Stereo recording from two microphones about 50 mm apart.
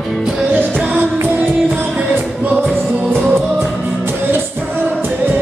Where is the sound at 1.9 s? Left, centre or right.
Right.